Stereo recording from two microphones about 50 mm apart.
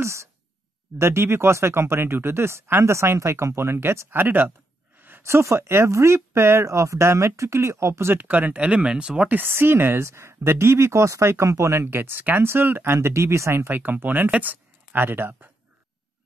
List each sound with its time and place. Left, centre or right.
0.0 s speech: right
0.9 s speech: right
4.2 s speech: right
5.2 s speech: right
8.1 s speech: right; by 9.3 s centre
9.3 s speech: right
11.2 s speech: right
11.9 s speech: right
12.8 s speech: right
13.7 s speech: right